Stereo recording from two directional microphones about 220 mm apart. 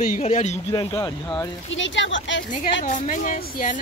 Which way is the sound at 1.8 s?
55° left (ahead or behind).